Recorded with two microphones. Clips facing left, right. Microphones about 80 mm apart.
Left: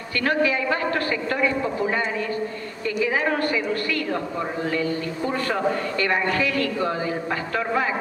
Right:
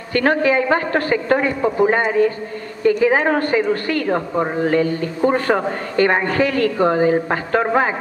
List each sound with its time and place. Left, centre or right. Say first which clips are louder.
0.1 s a woman's voice: right 6 dB; right